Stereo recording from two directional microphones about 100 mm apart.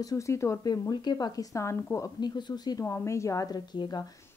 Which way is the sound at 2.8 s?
25° left (ahead or behind).